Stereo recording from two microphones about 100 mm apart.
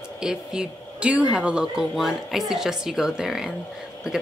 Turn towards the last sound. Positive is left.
turn(degrees=-5)  # may be behind; listen again after turning